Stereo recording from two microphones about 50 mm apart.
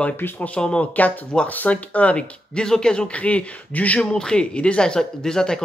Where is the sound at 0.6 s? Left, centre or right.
Centre.